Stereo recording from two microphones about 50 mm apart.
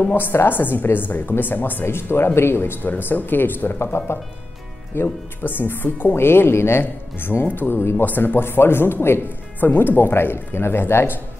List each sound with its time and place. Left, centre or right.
0.1 s a woman's voice: left
5.0 s speech: left
6.1 s speech: left
6.8 s a woman's voice: left
9.6 s a woman's voice: left